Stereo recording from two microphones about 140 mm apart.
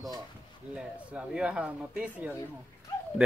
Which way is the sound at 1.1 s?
10° right (ahead or behind).